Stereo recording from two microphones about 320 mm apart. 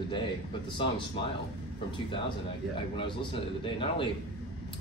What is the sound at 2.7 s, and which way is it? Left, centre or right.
Speech, centre.